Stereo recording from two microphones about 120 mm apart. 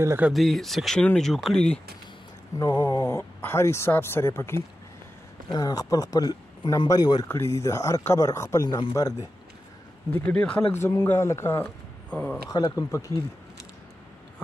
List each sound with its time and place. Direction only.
0.3 s speech: centre (ahead or behind)
2.6 s speech: 30° left (ahead or behind)
5.5 s speech: 30° left (ahead or behind)
7.2 s speech: 20° left (ahead or behind)
10.1 s speech: 10° left (ahead or behind)
10.7 s speech: 20° left (ahead or behind)
11.6 s a sound: 10° left (ahead or behind)
12.4 s speech: 30° left (ahead or behind)